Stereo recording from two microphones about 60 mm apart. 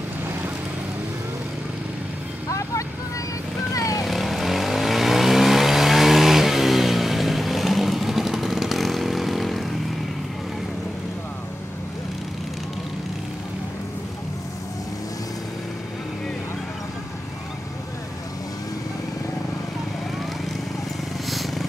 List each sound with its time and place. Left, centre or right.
3.7 s vehicle: left
4.0 s vehicle: centre
21.3 s vehicle: centre